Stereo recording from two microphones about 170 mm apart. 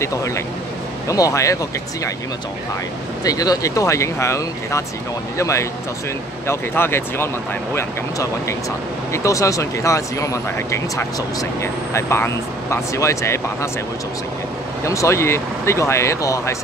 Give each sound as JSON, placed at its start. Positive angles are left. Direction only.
{"t": 1.0, "sound": "speech", "side_deg": 20}
{"t": 3.3, "sound": "speech", "side_deg": 20}
{"t": 14.9, "sound": "speech", "side_deg": 15}